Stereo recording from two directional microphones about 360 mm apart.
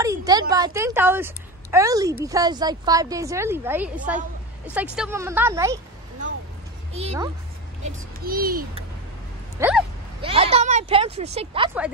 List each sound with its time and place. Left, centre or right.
0.0 s a woman's voice: centre
6.9 s a child's voice: centre
9.6 s speech: centre
10.2 s a woman's voice: centre